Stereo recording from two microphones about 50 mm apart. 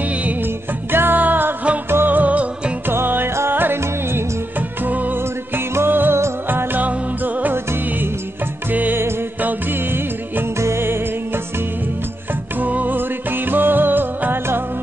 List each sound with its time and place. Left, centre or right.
0.0 s music: right
0.9 s music: right
2.9 s music: right
7.5 s music: right
9.4 s music: right
10.6 s music: right
12.5 s music: right